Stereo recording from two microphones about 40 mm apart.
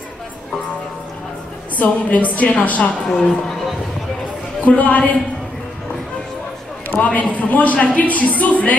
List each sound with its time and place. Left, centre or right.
2.0 s speech: left
3.1 s a woman's voice: centre
4.6 s speech: left
6.9 s speech: left